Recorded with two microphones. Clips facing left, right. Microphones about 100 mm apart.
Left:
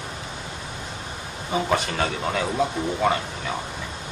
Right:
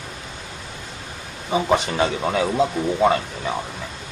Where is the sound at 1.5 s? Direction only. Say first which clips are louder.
Right 4 dB; 15° right (ahead or behind).